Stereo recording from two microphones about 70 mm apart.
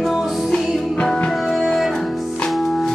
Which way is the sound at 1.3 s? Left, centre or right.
Centre.